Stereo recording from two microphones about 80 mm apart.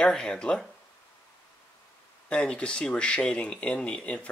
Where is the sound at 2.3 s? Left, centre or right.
Centre.